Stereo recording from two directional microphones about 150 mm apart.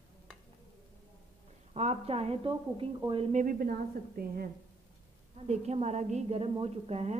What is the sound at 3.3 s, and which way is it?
A woman's voice, 65° right (ahead or behind).